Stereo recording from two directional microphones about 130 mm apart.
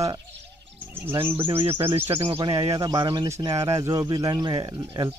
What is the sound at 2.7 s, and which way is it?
Speech, 35° right (ahead or behind).